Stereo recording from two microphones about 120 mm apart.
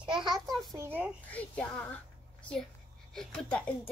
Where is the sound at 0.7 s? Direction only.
15° right (ahead or behind).